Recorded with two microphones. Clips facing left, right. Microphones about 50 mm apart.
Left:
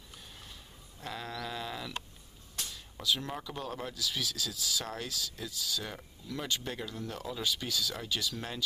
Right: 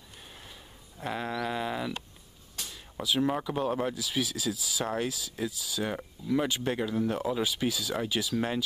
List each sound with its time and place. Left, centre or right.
1.0 s sheep: right
2.5 s a sound: centre
3.3 s speech: right